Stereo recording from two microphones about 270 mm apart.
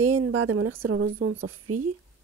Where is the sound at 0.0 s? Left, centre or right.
Right.